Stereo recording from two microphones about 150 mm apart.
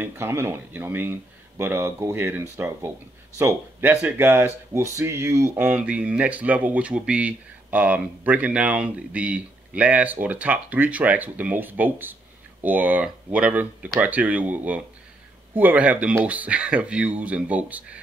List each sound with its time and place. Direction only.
0.0 s speech: 15° right (ahead or behind)